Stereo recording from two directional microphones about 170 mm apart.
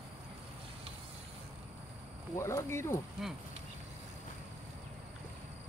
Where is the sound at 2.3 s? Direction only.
15° left (ahead or behind).